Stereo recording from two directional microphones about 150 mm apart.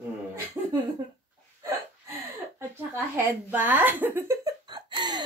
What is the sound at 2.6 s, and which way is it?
Speech, 15° right (ahead or behind).